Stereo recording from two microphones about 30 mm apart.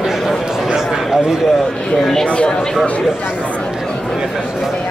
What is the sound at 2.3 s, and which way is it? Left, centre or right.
Speech, left.